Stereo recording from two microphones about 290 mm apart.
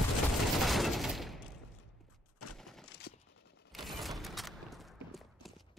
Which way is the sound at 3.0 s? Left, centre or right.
Left.